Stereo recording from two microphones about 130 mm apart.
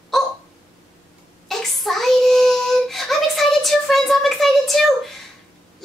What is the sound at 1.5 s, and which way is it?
Child singing, centre (ahead or behind).